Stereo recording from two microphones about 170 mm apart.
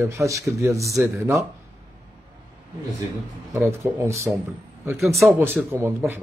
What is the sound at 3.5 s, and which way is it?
Speech, 15° right (ahead or behind).